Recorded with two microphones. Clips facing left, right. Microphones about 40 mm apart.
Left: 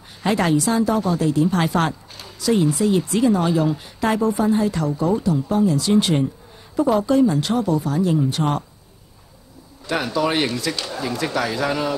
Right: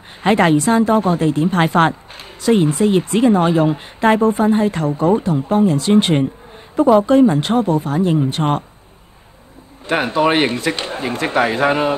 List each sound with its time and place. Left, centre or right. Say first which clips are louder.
0.2 s speech: right 5 dB; right
9.8 s speech: right 5 dB; right